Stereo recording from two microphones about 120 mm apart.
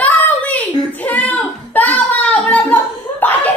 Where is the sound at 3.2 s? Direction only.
15° left (ahead or behind).